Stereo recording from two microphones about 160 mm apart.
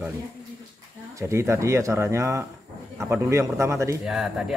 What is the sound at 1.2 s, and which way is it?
Speech, 15° right (ahead or behind).